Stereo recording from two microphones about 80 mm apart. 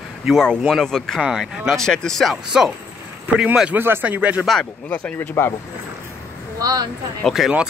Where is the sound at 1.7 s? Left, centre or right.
Centre.